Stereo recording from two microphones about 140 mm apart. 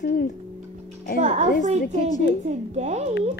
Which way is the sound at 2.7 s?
50° right (ahead or behind).